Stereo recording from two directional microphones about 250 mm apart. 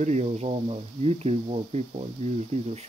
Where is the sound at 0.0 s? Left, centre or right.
Right.